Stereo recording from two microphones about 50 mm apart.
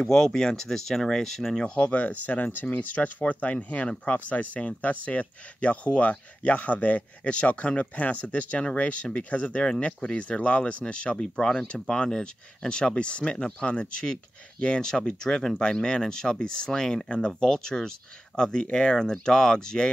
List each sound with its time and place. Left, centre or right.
0.0 s speech: centre
1.6 s speech: left